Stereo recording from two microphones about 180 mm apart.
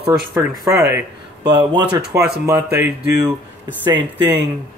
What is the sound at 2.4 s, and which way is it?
Speech, 15° right (ahead or behind).